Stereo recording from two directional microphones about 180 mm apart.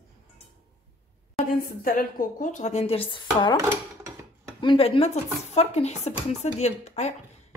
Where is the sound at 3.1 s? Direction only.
25° left (ahead or behind).